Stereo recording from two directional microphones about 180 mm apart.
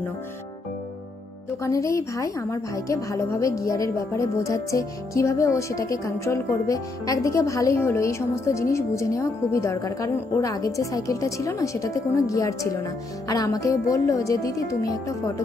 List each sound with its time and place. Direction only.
1.6 s a woman's voice: 15° left (ahead or behind)